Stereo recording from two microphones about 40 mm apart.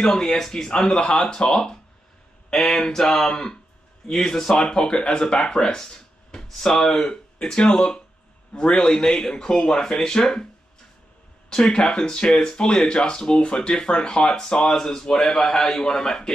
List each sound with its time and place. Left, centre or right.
0.0 s speech: centre
3.3 s speech: centre
11.5 s speech: centre